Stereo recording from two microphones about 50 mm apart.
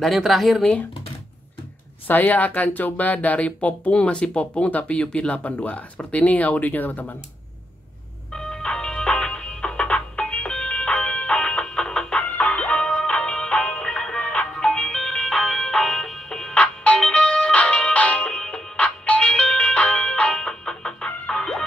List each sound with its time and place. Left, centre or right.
0.0 s speech: centre
2.0 s speech: left
8.3 s music: centre
16.5 s music: left; by 21.6 s centre